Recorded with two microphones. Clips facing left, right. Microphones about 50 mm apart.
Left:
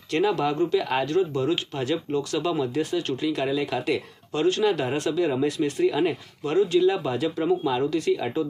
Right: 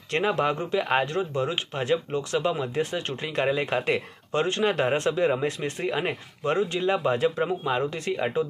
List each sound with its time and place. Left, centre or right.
0.1 s speech: right